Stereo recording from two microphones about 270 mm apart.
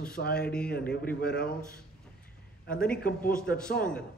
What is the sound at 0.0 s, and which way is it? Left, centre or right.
A man's voice, left.